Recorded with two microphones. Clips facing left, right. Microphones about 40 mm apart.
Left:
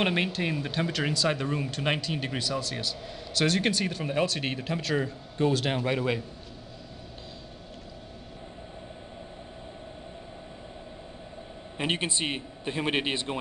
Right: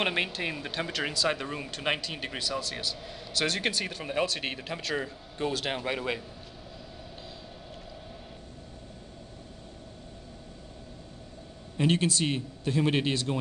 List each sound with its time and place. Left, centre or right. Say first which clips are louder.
0.0 s speech: left 2 dB; centre
11.7 s a man's voice: right 3 dB; left